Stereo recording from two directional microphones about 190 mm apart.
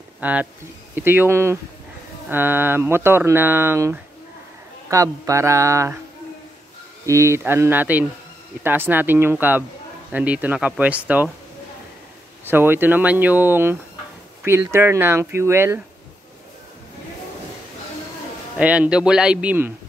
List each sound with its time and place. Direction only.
0.2 s speech: 5° right (ahead or behind)
7.1 s speech: 15° right (ahead or behind)
12.4 s speech: 10° right (ahead or behind)
18.6 s speech: 5° right (ahead or behind)